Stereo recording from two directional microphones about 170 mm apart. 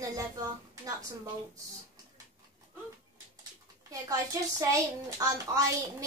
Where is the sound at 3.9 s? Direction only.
20° right (ahead or behind).